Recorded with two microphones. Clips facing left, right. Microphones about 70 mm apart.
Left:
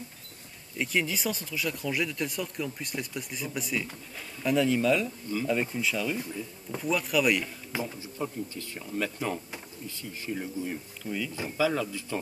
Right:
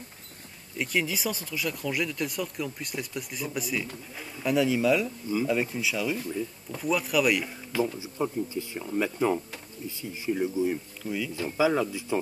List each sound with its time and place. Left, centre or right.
0.7 s speech: centre
8.0 s speech: centre
11.5 s speech: centre